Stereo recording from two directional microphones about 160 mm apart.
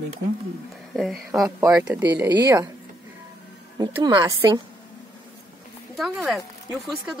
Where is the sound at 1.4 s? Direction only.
20° right (ahead or behind).